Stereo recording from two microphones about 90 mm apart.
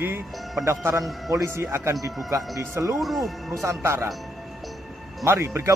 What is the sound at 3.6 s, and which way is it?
Speech, 30° right (ahead or behind).